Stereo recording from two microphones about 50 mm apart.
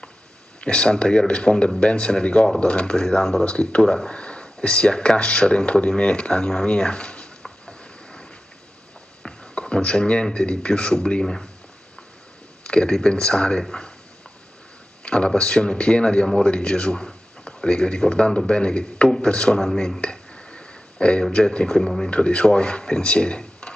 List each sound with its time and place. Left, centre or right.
0.6 s speech: left
3.1 s speech: centre
3.4 s speech: left
7.4 s a sound: centre
10.2 s speech: centre
12.6 s a sound: left
13.1 s speech: left
15.0 s speech: centre
19.6 s speech: centre
20.0 s a sound: left
21.2 s speech: left
21.7 s speech: centre
22.1 s speech: left